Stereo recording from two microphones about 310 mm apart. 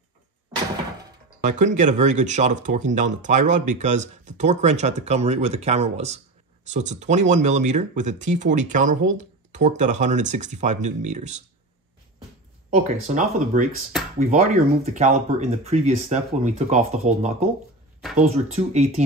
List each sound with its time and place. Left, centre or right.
1.4 s speech: right
12.7 s speech: right